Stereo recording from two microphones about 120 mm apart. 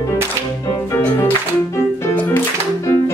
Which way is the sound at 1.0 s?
20° left (ahead or behind).